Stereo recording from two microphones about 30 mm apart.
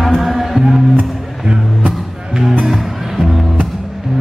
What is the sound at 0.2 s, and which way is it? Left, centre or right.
Music, centre.